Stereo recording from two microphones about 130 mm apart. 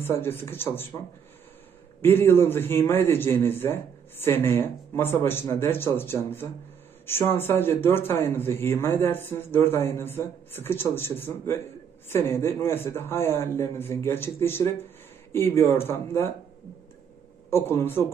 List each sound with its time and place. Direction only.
0.0 s a man's voice: 15° left (ahead or behind)
2.0 s a man's voice: 15° left (ahead or behind)
17.5 s a man's voice: 20° left (ahead or behind)